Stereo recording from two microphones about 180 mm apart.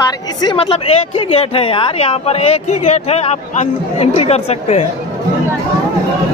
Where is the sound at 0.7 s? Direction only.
35° left (ahead or behind).